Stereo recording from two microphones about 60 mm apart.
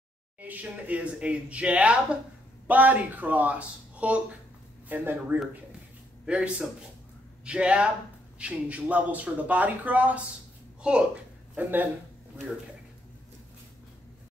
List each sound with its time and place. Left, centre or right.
0.4 s a man's voice: right
6.2 s a man's voice: centre
10.8 s speech: centre
11.5 s speech: right